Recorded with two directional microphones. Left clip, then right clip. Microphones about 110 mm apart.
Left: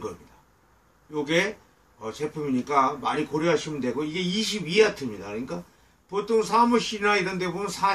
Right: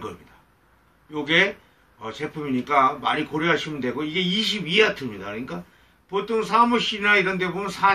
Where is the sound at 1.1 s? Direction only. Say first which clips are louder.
Right 4 dB; 40° left (ahead or behind).